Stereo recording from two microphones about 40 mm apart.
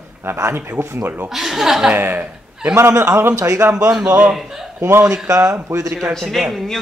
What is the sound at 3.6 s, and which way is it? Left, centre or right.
Speech, right.